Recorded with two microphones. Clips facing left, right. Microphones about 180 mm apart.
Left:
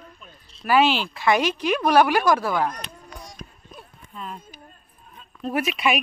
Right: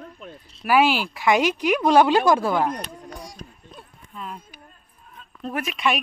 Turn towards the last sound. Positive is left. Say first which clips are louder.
# left 3 dB
turn(degrees=5)  # may be behind; listen again after turning